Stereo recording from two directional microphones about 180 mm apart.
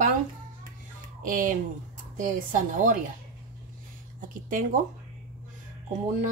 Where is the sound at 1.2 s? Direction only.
50° right (ahead or behind).